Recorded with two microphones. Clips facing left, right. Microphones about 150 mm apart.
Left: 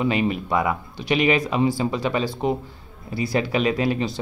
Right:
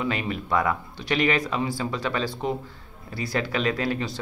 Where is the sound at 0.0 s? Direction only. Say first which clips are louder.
Left 6 dB; 20° left (ahead or behind).